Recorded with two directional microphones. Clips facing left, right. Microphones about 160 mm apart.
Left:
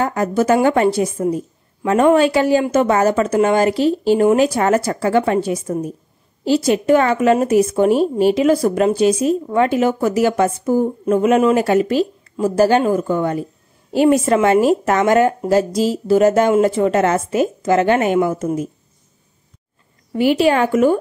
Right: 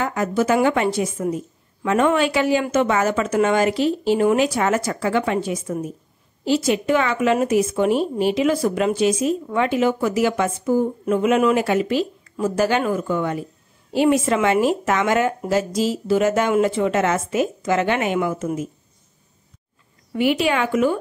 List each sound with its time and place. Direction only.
0.0 s a woman's voice: 40° left (ahead or behind)
20.1 s a woman's voice: 35° left (ahead or behind)